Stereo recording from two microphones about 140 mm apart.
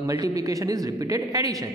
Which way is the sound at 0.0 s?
25° right (ahead or behind).